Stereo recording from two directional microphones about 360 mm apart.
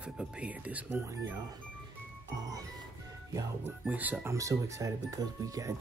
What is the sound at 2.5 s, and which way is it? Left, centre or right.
Speech, centre.